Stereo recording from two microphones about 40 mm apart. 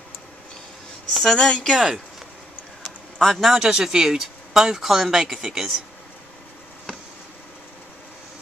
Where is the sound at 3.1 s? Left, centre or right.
Centre.